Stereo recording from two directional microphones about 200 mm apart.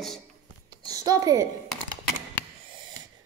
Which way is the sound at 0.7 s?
20° right (ahead or behind).